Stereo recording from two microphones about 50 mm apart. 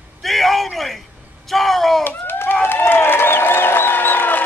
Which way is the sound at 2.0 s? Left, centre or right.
Left.